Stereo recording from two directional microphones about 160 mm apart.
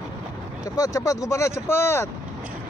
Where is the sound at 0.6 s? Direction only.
20° left (ahead or behind).